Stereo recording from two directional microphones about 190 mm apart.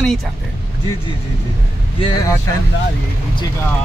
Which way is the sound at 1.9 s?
25° left (ahead or behind).